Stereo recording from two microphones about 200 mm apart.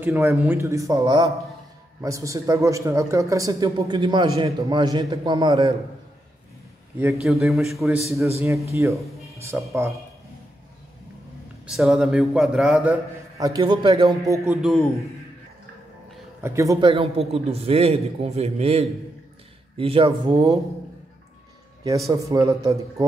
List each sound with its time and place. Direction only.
0.0 s a man's voice: 10° right (ahead or behind)
7.0 s a man's voice: 5° right (ahead or behind)
9.5 s a man's voice: 10° right (ahead or behind)
11.6 s a man's voice: centre (ahead or behind)
13.4 s a man's voice: 20° right (ahead or behind)
14.5 s a man's voice: centre (ahead or behind)
16.4 s a man's voice: 15° right (ahead or behind)
16.9 s a man's voice: 30° right (ahead or behind)
21.8 s a man's voice: 15° right (ahead or behind)